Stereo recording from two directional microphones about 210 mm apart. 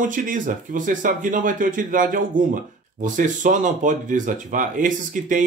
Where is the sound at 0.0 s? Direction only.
40° right (ahead or behind).